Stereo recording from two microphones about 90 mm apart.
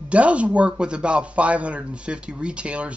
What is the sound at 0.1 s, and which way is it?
Speech, 15° right (ahead or behind).